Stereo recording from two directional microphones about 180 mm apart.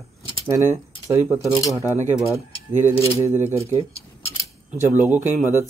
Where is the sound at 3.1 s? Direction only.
15° right (ahead or behind).